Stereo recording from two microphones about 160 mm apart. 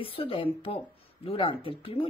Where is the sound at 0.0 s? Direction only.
35° left (ahead or behind).